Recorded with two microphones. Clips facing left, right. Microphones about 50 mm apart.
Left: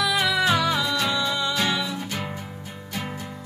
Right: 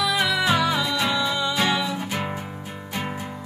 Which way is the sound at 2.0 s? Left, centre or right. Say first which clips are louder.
Right 3 dB; right.